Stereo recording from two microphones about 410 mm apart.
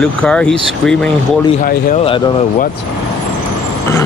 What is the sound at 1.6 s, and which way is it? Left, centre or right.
Speech, centre.